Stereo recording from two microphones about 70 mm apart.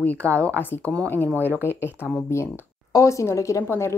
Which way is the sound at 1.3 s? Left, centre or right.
Right.